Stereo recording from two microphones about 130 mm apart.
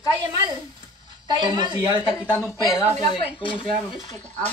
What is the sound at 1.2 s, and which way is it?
Speech, 35° right (ahead or behind).